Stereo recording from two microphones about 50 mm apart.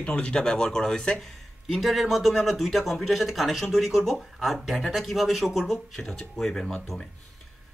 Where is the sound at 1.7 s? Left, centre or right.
Centre.